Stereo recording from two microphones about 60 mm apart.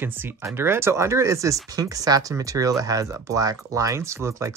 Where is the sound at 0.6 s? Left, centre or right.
Right.